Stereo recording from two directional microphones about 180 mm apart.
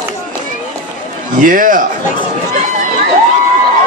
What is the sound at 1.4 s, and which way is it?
Speech, 50° right (ahead or behind).